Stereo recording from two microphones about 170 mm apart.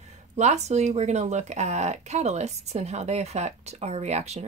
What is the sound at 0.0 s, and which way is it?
Speech, 40° right (ahead or behind).